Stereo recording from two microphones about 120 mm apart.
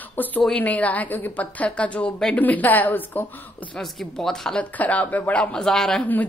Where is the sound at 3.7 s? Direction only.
5° left (ahead or behind).